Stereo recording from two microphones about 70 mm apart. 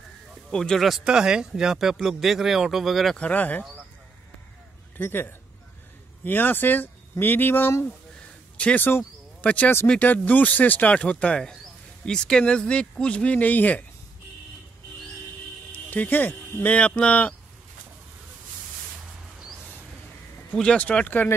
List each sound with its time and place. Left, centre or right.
0.5 s speech: centre
0.8 s speech: centre
3.2 s speech: left
4.9 s a man's voice: left
8.5 s speech: centre
15.7 s speech: left
20.5 s speech: centre